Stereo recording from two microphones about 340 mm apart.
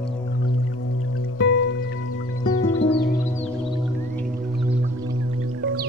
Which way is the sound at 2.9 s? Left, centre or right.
Left.